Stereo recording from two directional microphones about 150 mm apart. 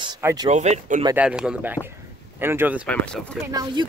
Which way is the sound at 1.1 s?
5° right (ahead or behind).